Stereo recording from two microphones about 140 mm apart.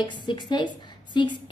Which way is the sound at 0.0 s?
35° left (ahead or behind).